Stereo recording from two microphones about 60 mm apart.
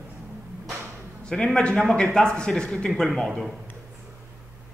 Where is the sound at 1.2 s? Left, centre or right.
Centre.